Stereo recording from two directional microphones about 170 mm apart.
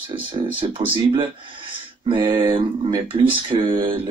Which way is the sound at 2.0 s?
30° right (ahead or behind).